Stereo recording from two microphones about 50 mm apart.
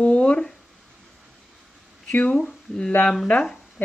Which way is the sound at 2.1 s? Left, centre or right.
Left.